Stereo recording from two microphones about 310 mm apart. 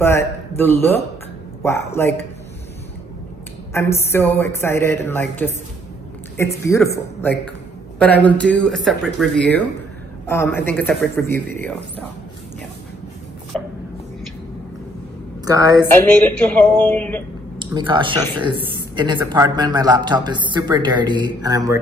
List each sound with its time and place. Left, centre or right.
0.0 s a man's voice: centre
3.7 s a woman's voice: centre
15.4 s a man's voice: centre
15.9 s a woman's voice: centre
17.6 s a man's voice: centre